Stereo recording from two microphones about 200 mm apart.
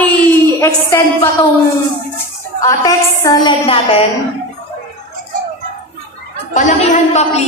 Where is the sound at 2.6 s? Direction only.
15° left (ahead or behind).